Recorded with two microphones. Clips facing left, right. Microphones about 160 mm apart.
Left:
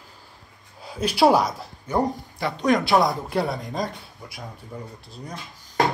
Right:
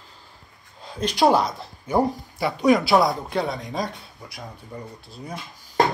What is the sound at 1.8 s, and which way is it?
Speech, 10° right (ahead or behind).